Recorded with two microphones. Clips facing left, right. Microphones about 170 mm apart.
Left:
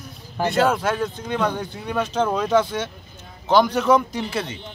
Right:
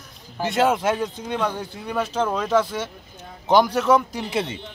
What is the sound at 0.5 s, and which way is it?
A man's voice, 20° right (ahead or behind).